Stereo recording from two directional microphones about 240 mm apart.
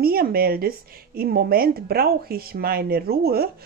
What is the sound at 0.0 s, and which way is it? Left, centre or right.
Speech, right.